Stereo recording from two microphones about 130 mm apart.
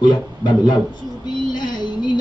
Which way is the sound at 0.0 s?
35° left (ahead or behind).